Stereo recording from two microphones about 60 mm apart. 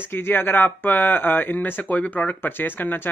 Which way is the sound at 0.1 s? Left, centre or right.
Left.